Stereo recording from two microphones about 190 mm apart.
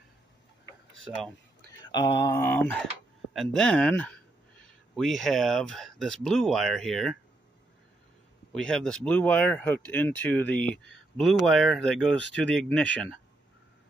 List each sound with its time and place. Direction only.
1.0 s speech: centre (ahead or behind)
1.8 s speech: 20° left (ahead or behind); by 7.2 s centre (ahead or behind)
8.5 s speech: 5° left (ahead or behind)